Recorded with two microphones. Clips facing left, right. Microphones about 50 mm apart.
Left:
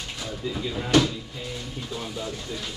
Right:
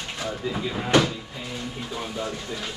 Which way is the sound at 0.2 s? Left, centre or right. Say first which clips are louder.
Right 3 dB; right.